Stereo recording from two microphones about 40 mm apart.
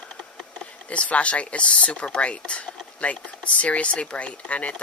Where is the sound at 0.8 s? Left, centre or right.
Left.